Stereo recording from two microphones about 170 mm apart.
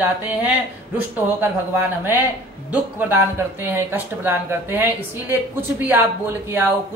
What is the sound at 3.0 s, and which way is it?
Speech, 10° right (ahead or behind).